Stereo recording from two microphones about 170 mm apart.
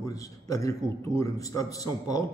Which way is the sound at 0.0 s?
20° left (ahead or behind).